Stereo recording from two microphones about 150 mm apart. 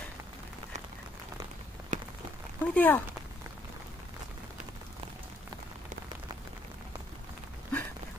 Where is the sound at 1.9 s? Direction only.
55° right (ahead or behind).